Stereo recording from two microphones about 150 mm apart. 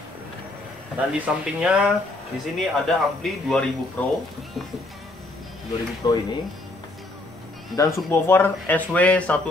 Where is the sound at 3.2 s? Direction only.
5° left (ahead or behind).